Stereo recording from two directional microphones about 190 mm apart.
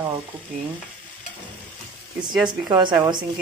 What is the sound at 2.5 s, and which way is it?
Speech, 25° right (ahead or behind).